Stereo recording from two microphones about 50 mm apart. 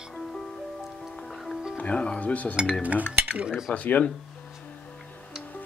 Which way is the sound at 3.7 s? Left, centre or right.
Left.